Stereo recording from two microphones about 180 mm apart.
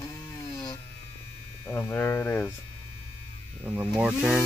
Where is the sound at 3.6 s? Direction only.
5° right (ahead or behind).